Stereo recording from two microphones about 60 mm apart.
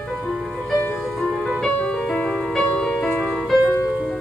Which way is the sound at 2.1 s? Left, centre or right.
Left.